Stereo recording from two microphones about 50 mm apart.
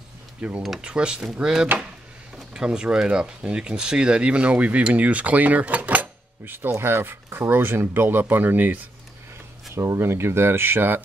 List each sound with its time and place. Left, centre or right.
0.6 s speech: centre; by 6.5 s right
6.8 s speech: right
9.9 s speech: right